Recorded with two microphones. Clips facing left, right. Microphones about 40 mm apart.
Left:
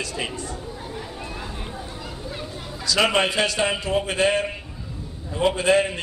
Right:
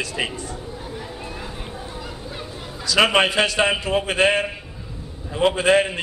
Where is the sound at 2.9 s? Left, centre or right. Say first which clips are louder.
Right 3 dB; right.